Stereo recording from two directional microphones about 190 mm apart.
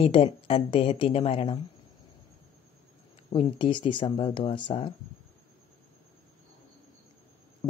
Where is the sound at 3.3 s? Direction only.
30° left (ahead or behind).